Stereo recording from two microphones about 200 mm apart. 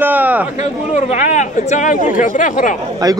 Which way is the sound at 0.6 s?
35° left (ahead or behind).